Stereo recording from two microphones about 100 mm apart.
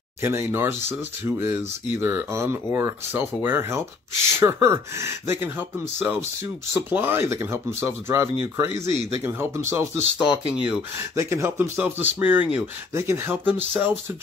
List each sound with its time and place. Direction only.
0.2 s speech: 25° right (ahead or behind)
10.1 s speech: 5° right (ahead or behind)
11.1 s speech: 30° right (ahead or behind)
12.9 s speech: 25° right (ahead or behind)